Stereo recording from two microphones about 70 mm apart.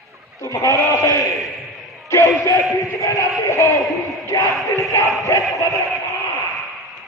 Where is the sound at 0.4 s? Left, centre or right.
Left.